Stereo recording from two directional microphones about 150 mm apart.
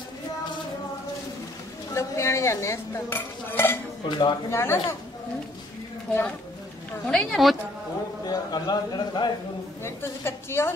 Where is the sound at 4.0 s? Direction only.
30° left (ahead or behind).